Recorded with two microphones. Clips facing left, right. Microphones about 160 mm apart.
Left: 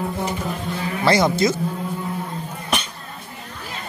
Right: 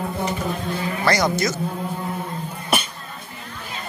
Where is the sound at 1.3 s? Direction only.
25° left (ahead or behind).